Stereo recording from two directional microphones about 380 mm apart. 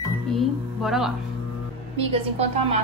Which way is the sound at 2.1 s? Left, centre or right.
Centre.